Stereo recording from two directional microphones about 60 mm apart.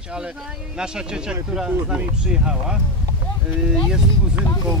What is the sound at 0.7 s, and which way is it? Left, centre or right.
Speech, centre.